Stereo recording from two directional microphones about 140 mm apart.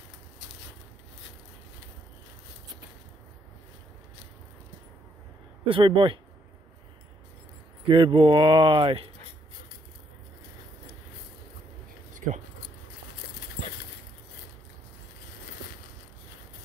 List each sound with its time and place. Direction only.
5.7 s speech: 35° right (ahead or behind)
7.9 s speech: 40° right (ahead or behind)
12.1 s a sound: 65° right (ahead or behind)